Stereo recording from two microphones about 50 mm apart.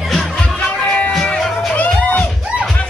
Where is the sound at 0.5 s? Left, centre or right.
Left.